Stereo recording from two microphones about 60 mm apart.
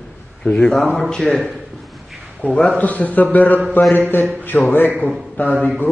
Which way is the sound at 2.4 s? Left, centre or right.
Left.